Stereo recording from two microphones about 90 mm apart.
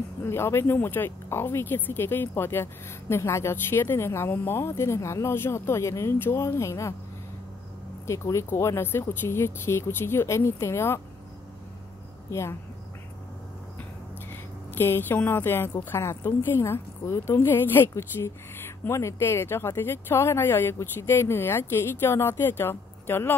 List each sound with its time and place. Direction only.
0.2 s speech: 30° left (ahead or behind)
8.1 s speech: 35° left (ahead or behind)
12.3 s speech: 30° left (ahead or behind)
14.3 s speech: 25° left (ahead or behind)